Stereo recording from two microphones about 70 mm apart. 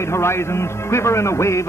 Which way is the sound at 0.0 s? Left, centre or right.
Left.